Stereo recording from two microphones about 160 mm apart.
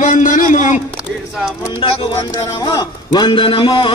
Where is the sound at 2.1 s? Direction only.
20° left (ahead or behind).